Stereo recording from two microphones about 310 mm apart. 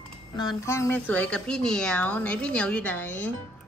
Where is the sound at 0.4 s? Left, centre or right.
Centre.